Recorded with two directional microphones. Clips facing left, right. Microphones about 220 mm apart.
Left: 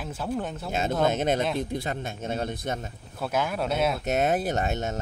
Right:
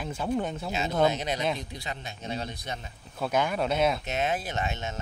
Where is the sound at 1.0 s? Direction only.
50° left (ahead or behind).